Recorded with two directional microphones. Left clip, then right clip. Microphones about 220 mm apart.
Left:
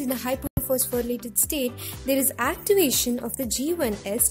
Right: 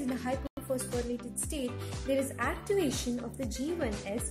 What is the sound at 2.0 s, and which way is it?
A woman's voice, 50° left (ahead or behind).